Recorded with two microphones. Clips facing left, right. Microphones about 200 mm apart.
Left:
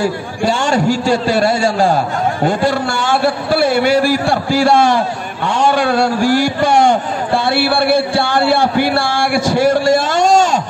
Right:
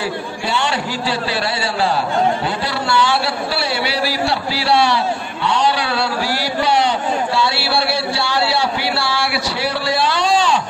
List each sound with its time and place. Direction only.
0.0 s a man's voice: 45° left (ahead or behind)